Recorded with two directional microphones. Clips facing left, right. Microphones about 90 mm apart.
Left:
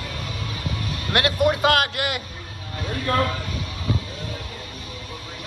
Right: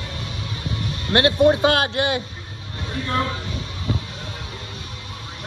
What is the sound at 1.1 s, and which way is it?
A man's voice, 30° right (ahead or behind).